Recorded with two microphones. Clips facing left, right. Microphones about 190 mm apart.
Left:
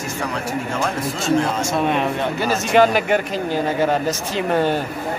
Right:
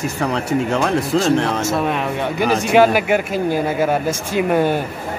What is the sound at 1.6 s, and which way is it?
Speech, centre (ahead or behind).